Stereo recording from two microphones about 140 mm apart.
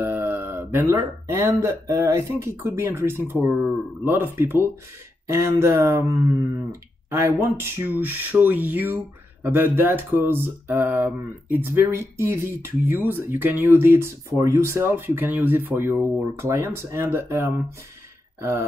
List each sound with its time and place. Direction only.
0.0 s speech: 15° right (ahead or behind)